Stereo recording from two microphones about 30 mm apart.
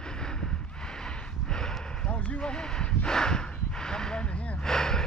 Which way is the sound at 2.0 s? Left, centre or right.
Left.